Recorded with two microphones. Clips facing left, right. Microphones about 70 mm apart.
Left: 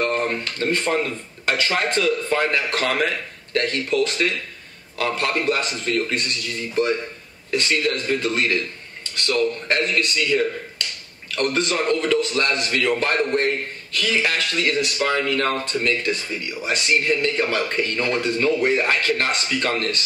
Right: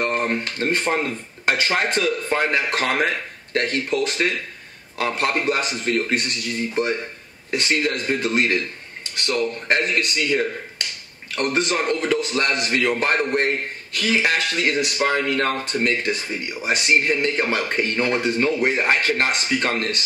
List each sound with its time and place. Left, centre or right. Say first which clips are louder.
0.0 s speech: even; centre